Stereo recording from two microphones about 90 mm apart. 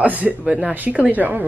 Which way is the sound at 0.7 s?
20° right (ahead or behind).